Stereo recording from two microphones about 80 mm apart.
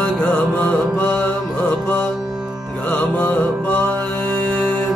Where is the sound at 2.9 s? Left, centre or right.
Centre.